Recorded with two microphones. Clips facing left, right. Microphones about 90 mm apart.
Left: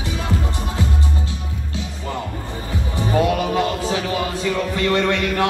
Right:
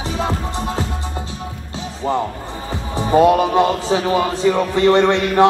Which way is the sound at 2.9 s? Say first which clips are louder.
Right 7 dB; 30° right (ahead or behind).